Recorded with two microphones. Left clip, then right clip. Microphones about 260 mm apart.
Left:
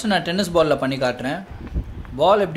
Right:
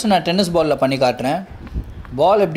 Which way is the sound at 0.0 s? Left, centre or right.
Centre.